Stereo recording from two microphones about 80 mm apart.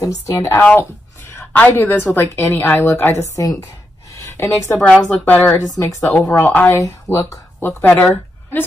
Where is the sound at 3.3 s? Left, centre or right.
Left.